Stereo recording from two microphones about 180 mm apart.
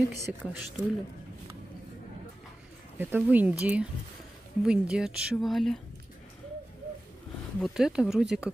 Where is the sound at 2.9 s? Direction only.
10° right (ahead or behind).